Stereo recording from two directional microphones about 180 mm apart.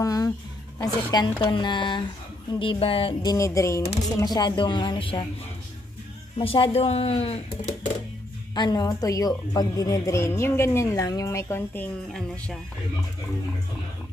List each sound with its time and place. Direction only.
0.0 s a sound: 20° left (ahead or behind)
6.3 s speech: 30° left (ahead or behind)
8.5 s a woman's voice: 20° left (ahead or behind); by 12.5 s 5° left (ahead or behind)